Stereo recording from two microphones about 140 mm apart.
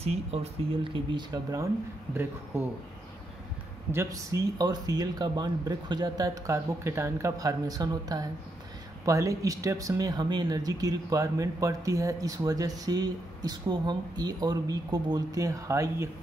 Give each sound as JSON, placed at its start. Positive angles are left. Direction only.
{"t": 0.0, "sound": "speech", "side_deg": -50}
{"t": 3.9, "sound": "speech", "side_deg": -20}